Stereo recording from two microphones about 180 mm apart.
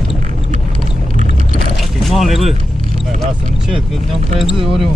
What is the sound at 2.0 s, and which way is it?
Boat, centre (ahead or behind).